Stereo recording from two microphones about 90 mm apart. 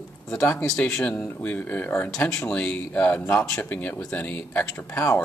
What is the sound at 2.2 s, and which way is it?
Speech, 30° left (ahead or behind).